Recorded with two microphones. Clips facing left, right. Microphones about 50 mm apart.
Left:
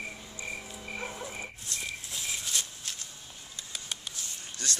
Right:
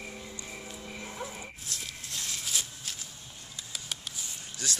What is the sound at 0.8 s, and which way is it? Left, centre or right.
Music, left.